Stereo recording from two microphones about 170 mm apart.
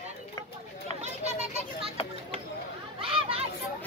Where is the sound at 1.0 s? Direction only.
40° right (ahead or behind).